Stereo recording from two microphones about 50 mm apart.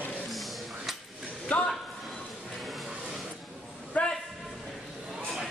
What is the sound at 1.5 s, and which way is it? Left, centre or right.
Speech, left.